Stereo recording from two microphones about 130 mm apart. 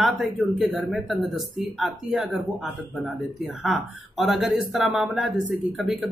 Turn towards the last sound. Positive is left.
turn(degrees=-5)  # may be behind; listen again after turning